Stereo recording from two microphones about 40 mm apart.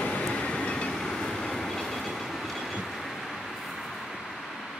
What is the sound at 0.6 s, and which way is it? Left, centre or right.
Train, left.